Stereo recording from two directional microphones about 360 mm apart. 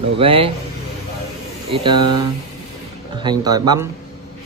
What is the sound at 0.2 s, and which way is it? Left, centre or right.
Speech, centre.